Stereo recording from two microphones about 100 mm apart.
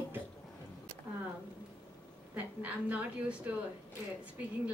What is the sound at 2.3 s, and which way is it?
A woman's voice, 15° right (ahead or behind).